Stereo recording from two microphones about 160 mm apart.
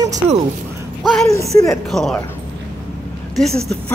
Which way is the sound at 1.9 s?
Centre (ahead or behind).